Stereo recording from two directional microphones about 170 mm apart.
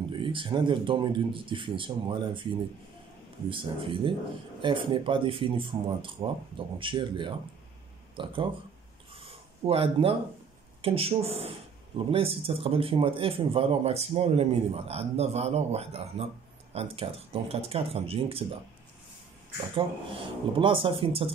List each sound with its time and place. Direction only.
0.1 s speech: 30° right (ahead or behind)
3.4 s speech: 30° right (ahead or behind)
9.1 s a sound: 35° right (ahead or behind)
10.8 s speech: 35° right (ahead or behind)
19.7 s speech: 30° right (ahead or behind)